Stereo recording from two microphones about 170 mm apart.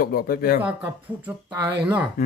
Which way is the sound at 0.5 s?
10° right (ahead or behind).